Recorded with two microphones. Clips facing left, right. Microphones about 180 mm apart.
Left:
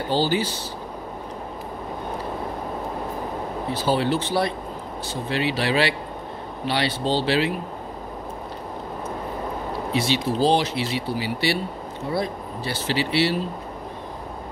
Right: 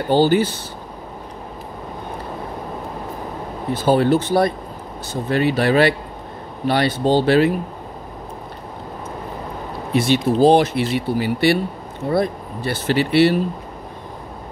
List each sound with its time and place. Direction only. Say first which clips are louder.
0.1 s speech: right 8 dB; 55° right (ahead or behind)
3.7 s speech: right 7 dB; 50° right (ahead or behind)
9.9 s speech: right 7 dB; 55° right (ahead or behind)